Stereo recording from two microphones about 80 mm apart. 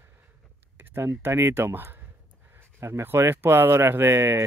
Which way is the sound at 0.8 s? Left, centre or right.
Right.